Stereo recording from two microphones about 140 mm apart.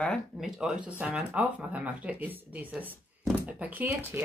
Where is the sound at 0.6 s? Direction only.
5° right (ahead or behind).